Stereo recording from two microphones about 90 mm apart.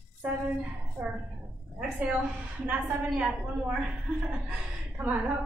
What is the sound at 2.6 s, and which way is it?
A woman's voice, 15° right (ahead or behind).